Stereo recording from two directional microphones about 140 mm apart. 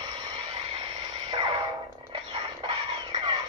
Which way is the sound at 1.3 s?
30° right (ahead or behind).